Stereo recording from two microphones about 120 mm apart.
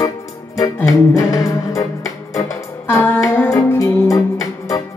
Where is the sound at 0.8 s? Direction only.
30° left (ahead or behind).